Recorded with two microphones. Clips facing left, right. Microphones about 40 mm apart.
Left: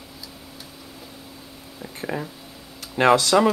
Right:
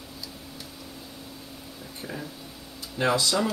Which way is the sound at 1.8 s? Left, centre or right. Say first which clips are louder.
Left 8 dB; left.